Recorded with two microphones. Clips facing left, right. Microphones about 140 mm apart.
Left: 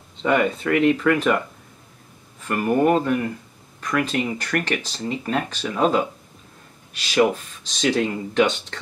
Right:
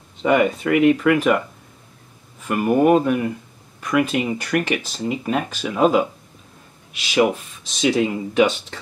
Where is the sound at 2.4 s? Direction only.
10° right (ahead or behind).